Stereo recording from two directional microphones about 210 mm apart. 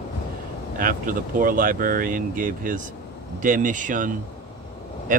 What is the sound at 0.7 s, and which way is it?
Speech, 40° right (ahead or behind).